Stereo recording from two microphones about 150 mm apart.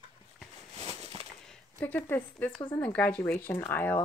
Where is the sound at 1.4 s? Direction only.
10° left (ahead or behind).